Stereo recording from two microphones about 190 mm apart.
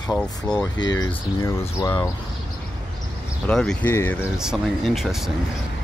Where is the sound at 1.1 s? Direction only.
15° left (ahead or behind).